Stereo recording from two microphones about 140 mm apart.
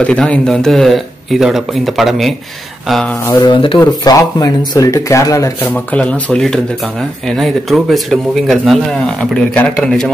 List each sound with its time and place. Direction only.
0.0 s speech: 10° left (ahead or behind)
3.3 s speech: 25° left (ahead or behind)
5.6 s speech: 10° left (ahead or behind)